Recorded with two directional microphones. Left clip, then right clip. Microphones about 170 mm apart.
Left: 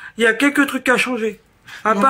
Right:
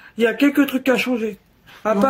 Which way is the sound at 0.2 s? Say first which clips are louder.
Left 2 dB; 35° right (ahead or behind).